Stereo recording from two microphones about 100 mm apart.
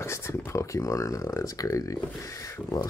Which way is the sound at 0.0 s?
25° left (ahead or behind).